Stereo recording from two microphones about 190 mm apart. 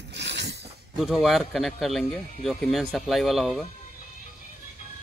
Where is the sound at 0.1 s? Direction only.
65° right (ahead or behind).